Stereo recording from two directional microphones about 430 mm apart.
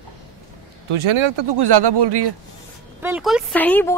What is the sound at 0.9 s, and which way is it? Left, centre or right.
Speech, right.